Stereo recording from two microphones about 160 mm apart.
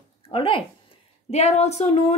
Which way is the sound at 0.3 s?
35° left (ahead or behind).